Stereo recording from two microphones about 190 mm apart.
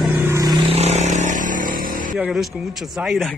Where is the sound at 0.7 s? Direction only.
35° right (ahead or behind).